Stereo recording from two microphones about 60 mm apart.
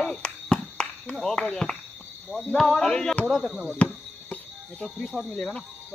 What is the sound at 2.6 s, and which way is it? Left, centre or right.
Speech, centre.